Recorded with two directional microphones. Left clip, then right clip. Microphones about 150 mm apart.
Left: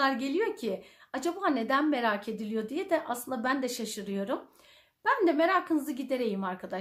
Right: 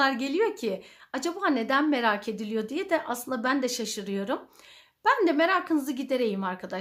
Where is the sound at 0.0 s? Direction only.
35° right (ahead or behind).